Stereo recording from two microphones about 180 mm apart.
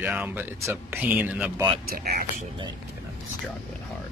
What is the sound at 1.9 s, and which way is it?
Speech, 55° right (ahead or behind).